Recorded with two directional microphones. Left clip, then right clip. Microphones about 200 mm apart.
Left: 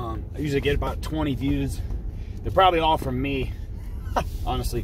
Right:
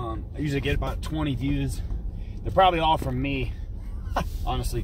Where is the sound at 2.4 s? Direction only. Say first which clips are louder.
Left 1 dB; centre (ahead or behind).